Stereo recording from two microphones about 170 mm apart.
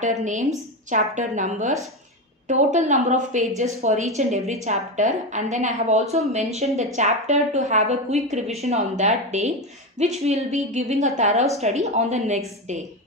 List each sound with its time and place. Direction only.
0.0 s a woman's voice: 45° right (ahead or behind)